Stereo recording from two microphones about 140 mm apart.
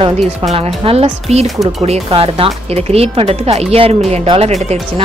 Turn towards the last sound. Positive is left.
turn(degrees=-50)  # may be behind; listen again after turning